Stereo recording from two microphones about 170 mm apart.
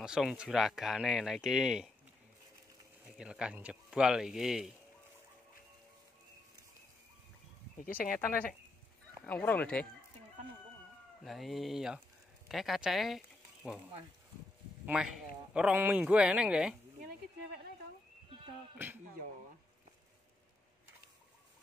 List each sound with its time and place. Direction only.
0.0 s speech: 5° right (ahead or behind)
3.2 s speech: 5° right (ahead or behind)
8.0 s speech: 55° left (ahead or behind)
9.2 s speech: 10° left (ahead or behind)
11.2 s speech: centre (ahead or behind)
14.9 s speech: 5° right (ahead or behind)
18.8 s speech: 15° right (ahead or behind)